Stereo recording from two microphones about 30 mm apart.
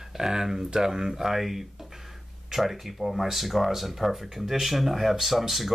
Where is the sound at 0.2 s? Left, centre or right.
Centre.